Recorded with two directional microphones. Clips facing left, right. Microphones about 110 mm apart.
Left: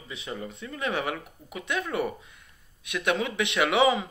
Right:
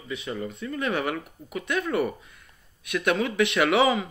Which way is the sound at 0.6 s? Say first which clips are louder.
Right 2 dB; 10° left (ahead or behind).